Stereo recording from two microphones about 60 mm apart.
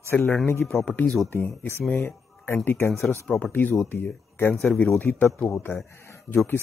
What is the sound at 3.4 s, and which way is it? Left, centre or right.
Speech, left.